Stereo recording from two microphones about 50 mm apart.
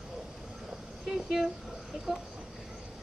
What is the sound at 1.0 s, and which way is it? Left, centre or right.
Speech, centre.